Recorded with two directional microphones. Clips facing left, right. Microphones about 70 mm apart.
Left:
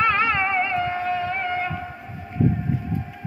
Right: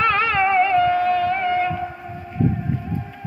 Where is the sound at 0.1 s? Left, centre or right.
Left.